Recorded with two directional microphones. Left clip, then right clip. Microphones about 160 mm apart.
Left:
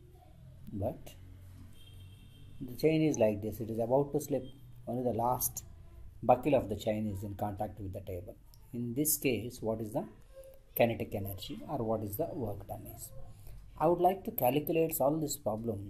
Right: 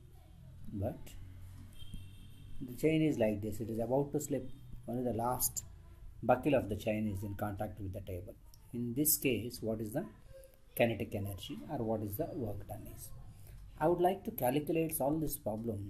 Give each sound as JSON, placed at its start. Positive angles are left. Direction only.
{"t": 0.7, "sound": "speech", "side_deg": 15}
{"t": 2.7, "sound": "speech", "side_deg": 15}